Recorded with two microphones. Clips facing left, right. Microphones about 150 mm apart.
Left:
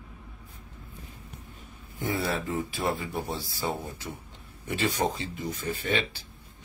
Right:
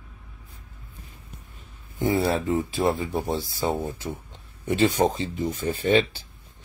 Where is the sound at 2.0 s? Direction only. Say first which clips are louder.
Right 7 dB; 25° right (ahead or behind).